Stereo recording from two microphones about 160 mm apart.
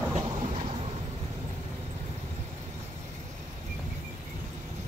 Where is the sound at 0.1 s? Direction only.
45° right (ahead or behind).